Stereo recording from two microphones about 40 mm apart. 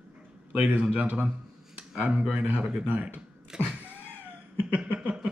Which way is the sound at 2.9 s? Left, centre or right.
Right.